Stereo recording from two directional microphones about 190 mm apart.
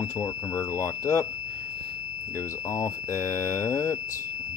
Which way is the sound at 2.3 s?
15° left (ahead or behind).